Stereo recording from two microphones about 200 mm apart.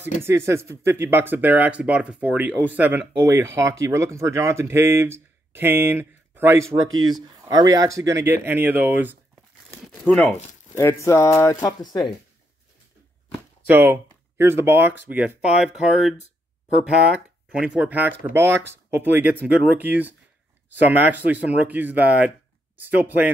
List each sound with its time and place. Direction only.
0.5 s speech: 15° right (ahead or behind)
10.0 s speech: 5° left (ahead or behind)
13.7 s speech: 10° right (ahead or behind)